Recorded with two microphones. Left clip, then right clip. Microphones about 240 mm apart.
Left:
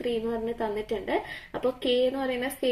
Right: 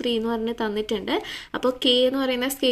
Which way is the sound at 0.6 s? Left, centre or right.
Right.